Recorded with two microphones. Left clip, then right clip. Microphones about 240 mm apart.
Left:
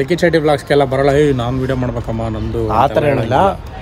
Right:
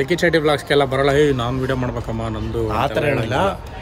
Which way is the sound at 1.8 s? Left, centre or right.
Left.